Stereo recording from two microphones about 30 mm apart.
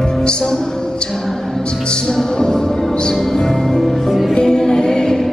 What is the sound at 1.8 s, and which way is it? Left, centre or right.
Music, left.